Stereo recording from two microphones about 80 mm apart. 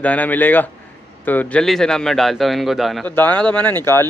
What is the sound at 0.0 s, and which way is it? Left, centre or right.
A man's voice, centre.